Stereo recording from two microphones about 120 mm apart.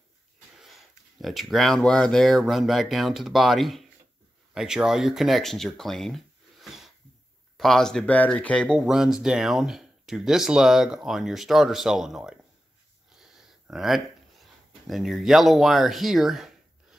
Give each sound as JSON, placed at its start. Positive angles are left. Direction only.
{"t": 0.6, "sound": "speech", "side_deg": 0}